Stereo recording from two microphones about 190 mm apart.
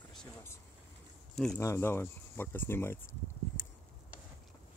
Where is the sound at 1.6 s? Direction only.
15° left (ahead or behind).